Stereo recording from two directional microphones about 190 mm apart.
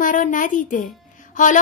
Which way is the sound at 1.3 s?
45° left (ahead or behind).